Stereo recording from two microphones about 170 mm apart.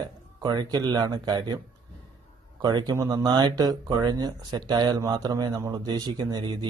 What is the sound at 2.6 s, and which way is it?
Speech, 20° right (ahead or behind).